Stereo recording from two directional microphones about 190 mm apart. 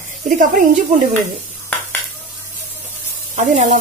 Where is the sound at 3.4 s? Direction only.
40° right (ahead or behind).